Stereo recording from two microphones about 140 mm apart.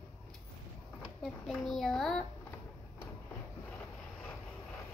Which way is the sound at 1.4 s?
Centre (ahead or behind).